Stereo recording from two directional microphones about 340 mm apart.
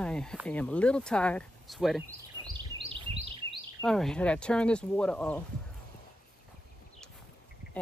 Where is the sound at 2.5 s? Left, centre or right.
Centre.